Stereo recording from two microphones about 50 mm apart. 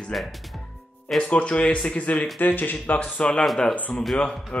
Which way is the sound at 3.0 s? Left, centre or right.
Left.